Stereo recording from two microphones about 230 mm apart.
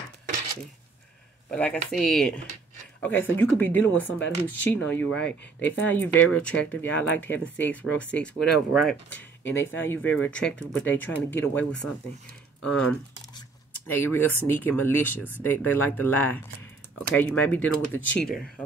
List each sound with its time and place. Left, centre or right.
1.5 s speech: centre
3.1 s speech: left
3.3 s speech: centre
9.4 s speech: left
9.8 s speech: centre
12.6 s speech: centre